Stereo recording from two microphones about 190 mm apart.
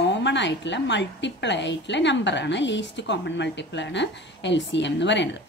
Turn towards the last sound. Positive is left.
turn(degrees=70)  # may be behind; listen again after turning